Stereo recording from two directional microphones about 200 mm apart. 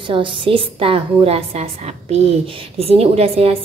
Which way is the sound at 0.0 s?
25° right (ahead or behind).